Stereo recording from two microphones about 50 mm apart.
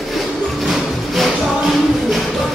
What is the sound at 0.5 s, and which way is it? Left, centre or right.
Music, centre.